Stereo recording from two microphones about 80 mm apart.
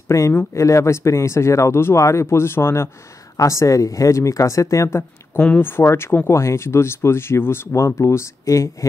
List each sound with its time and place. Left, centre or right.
0.1 s speech: left